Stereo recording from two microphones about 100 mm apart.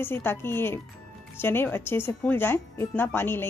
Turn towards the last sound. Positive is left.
turn(degrees=25)  # may be behind; listen again after turning